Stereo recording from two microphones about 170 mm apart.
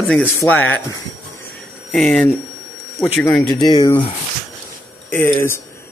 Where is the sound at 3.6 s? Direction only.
25° left (ahead or behind).